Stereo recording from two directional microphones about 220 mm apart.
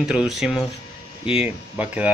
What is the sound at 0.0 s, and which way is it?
Speech, centre (ahead or behind).